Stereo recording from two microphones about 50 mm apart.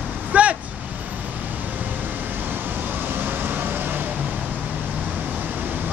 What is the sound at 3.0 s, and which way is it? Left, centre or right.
Vehicle, right.